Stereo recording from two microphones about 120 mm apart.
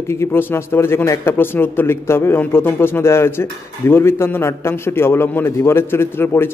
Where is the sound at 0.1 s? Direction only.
20° left (ahead or behind).